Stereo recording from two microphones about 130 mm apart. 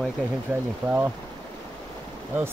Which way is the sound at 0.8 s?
15° right (ahead or behind).